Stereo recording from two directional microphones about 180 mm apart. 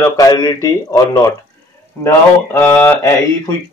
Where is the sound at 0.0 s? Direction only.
25° left (ahead or behind).